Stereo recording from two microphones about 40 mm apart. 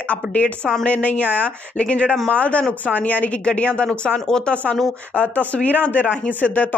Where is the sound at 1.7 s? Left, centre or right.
Left.